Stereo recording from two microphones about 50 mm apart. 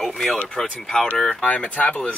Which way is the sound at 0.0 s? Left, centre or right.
Centre.